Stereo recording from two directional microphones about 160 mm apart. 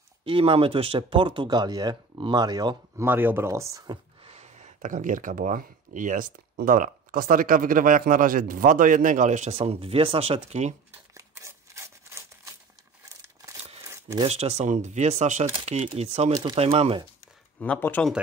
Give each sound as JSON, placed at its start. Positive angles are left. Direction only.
{"t": 0.2, "sound": "speech", "side_deg": -35}
{"t": 3.1, "sound": "speech", "side_deg": -15}
{"t": 4.3, "sound": "speech", "side_deg": -40}
{"t": 10.9, "sound": "a sound", "side_deg": -20}
{"t": 14.2, "sound": "speech", "side_deg": -40}
{"t": 17.6, "sound": "speech", "side_deg": 10}